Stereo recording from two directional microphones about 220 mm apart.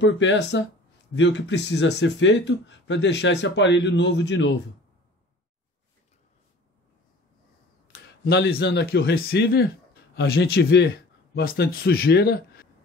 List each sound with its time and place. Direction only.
0.0 s speech: 55° left (ahead or behind)
7.9 s speech: 45° left (ahead or behind)